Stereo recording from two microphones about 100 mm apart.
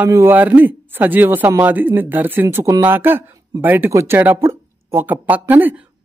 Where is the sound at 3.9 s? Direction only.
30° right (ahead or behind).